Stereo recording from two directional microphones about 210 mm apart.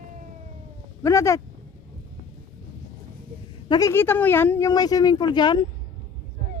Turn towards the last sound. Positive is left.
turn(degrees=20)  # may be behind; listen again after turning